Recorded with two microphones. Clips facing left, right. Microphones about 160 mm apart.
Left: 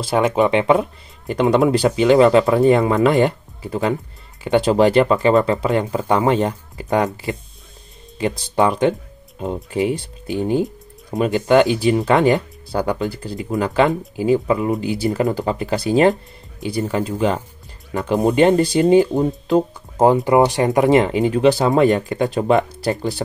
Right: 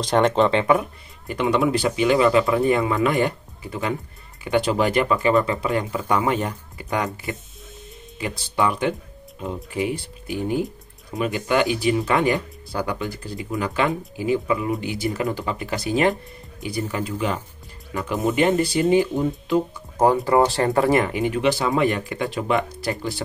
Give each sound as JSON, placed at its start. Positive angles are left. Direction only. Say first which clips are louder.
{"t": 0.0, "sound": "speech", "louder": "left 1 dB", "side_deg": 5}
{"t": 1.2, "sound": "speech", "louder": "left 5 dB", "side_deg": 40}
{"t": 8.2, "sound": "speech", "louder": "left 5 dB", "side_deg": 35}
{"t": 20.1, "sound": "speech", "louder": "left 4 dB", "side_deg": 20}